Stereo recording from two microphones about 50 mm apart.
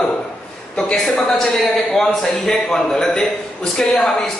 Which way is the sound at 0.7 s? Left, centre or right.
Centre.